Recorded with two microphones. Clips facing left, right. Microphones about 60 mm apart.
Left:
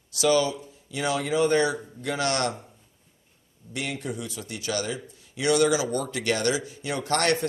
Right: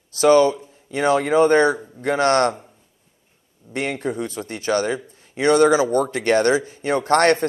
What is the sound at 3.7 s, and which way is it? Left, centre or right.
Speech, right.